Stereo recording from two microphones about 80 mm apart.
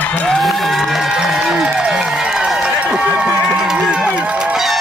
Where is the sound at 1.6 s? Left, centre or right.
Centre.